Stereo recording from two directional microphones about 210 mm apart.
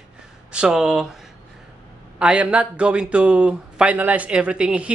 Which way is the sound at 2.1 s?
5° right (ahead or behind).